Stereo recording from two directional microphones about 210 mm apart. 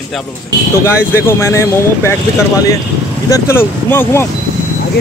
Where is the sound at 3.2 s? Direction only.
15° left (ahead or behind).